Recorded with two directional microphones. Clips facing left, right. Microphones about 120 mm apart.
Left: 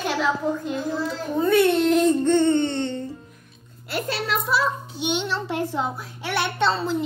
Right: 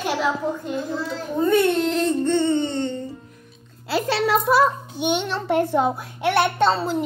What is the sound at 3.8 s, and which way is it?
Speech, 90° right.